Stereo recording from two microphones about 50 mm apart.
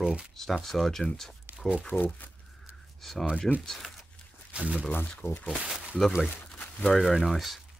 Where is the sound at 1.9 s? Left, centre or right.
Left.